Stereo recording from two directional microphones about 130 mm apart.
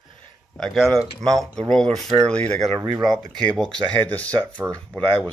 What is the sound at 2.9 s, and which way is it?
Speech, centre (ahead or behind).